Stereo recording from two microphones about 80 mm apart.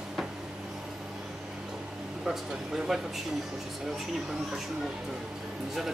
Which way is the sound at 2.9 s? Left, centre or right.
Centre.